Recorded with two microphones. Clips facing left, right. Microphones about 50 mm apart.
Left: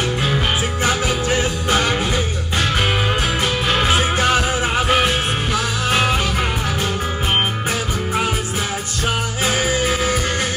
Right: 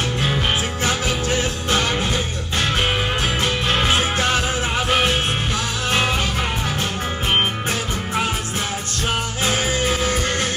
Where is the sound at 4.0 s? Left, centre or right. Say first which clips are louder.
Left 3 dB; centre.